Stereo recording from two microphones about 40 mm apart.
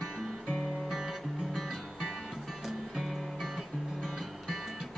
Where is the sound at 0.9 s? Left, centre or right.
Centre.